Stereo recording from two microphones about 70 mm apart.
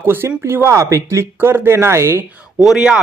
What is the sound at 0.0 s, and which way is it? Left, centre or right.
Speech, right.